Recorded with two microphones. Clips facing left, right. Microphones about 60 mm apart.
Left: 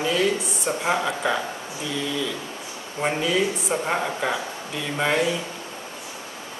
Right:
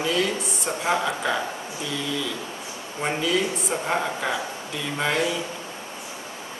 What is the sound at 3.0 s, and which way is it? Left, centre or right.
Speech, centre.